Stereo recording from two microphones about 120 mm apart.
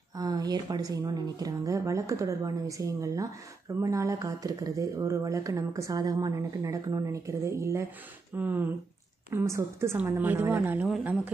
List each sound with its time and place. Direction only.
0.1 s a woman's voice: 30° right (ahead or behind); by 10.9 s 15° right (ahead or behind)